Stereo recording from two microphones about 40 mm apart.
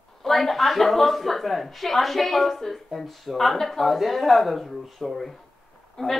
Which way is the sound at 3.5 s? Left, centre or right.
Centre.